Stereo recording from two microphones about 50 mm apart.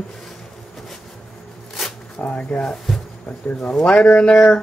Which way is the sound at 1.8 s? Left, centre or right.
Centre.